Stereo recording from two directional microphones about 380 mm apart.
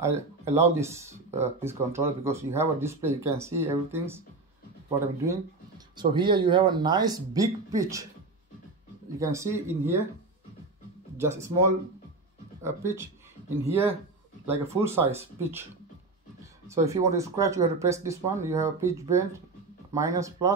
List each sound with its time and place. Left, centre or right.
0.0 s speech: centre
5.3 s speech: centre
9.2 s speech: centre
11.1 s speech: centre
12.6 s speech: centre
14.4 s speech: centre
16.6 s speech: centre